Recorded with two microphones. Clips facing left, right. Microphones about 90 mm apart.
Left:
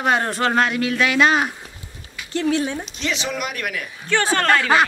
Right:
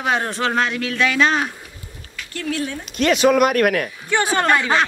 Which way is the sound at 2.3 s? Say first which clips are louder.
Left 4 dB; 25° left (ahead or behind).